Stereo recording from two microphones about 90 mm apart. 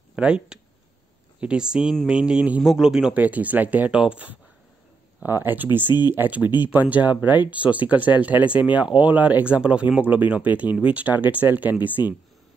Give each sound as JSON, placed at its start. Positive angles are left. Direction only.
{"t": 0.1, "sound": "speech", "side_deg": -10}
{"t": 12.0, "sound": "speech", "side_deg": 50}